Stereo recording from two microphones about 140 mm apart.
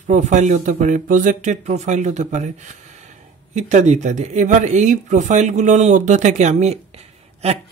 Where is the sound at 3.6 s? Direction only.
55° right (ahead or behind).